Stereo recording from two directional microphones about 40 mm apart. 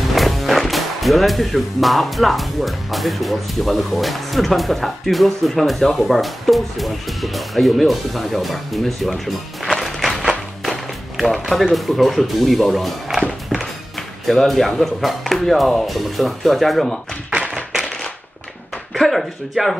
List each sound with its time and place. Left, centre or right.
0.1 s speech: centre
9.8 s a sound: centre
11.1 s speech: centre
13.6 s music: centre
14.8 s speech: centre
17.3 s tap: right
17.8 s a sound: centre
18.9 s speech: centre